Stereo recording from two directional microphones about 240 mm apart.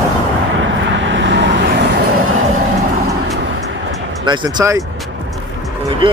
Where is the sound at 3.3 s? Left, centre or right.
Right.